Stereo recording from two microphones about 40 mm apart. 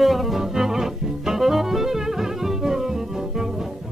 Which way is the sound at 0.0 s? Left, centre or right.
Centre.